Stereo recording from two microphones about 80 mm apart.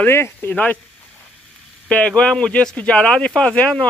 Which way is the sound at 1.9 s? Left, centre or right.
Centre.